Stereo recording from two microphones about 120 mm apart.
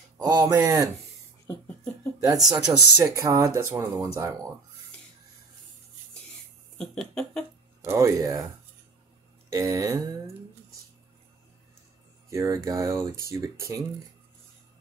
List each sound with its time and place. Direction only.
0.2 s speech: 30° right (ahead or behind)
2.1 s speech: 30° right (ahead or behind)
6.8 s a sound: 5° left (ahead or behind)
7.8 s speech: 20° right (ahead or behind)
9.5 s speech: 30° right (ahead or behind)
12.3 s speech: 25° right (ahead or behind)